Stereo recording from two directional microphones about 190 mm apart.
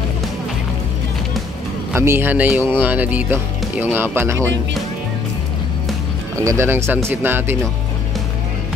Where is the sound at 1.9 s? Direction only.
10° right (ahead or behind).